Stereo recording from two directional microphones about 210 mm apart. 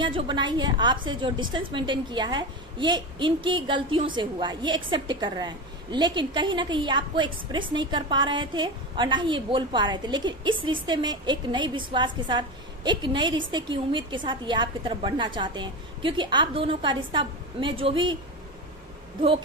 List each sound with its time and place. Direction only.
0.0 s a woman's voice: 20° right (ahead or behind)